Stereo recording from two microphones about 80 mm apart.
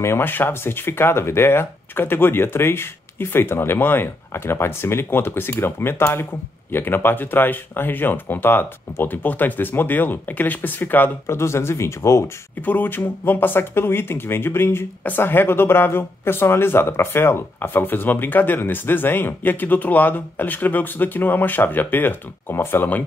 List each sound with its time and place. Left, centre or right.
0.0 s speech: left
12.6 s speech: left